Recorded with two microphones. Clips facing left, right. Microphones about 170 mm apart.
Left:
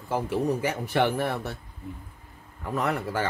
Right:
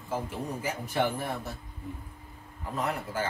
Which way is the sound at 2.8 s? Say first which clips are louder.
Left 4 dB; 70° left (ahead or behind).